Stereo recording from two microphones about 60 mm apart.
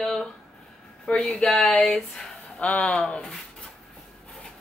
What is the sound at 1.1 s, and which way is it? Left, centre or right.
Speech, centre.